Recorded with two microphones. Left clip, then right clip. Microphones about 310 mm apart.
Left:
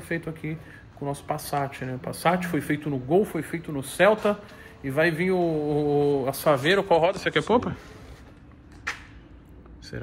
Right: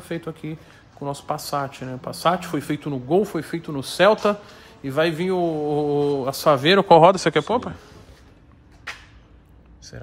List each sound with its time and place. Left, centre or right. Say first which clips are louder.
0.1 s speech: right 1 dB; centre
7.3 s speech: right 1 dB; centre